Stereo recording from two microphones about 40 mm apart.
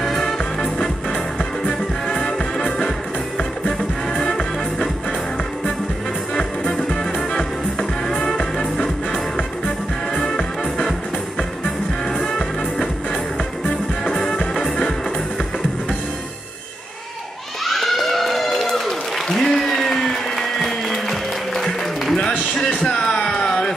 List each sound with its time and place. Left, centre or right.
0.0 s music: centre
0.4 s music: centre
4.2 s music: centre
6.8 s music: centre
14.1 s music: centre
17.6 s applause: centre
22.8 s a sound: centre